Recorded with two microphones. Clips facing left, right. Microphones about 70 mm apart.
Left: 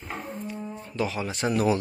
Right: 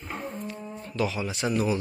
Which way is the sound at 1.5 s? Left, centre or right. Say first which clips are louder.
Left 3 dB; left.